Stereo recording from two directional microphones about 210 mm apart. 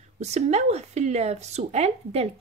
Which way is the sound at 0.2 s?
30° right (ahead or behind).